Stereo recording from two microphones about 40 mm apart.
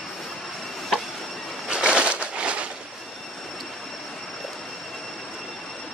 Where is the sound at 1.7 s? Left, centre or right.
Right.